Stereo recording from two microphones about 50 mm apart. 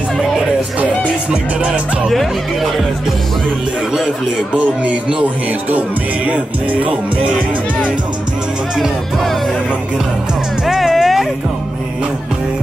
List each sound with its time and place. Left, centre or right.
2.0 s speech: centre
5.7 s music: right
10.7 s music: centre